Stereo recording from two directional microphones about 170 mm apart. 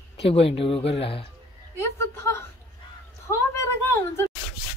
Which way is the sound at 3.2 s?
15° left (ahead or behind).